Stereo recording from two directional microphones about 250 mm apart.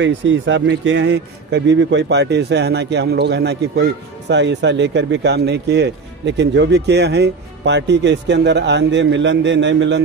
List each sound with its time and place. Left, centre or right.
0.0 s speech: right